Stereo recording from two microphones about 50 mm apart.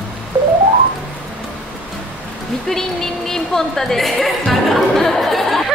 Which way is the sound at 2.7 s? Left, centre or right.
Centre.